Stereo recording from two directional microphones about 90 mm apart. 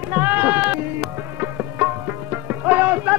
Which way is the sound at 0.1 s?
20° right (ahead or behind).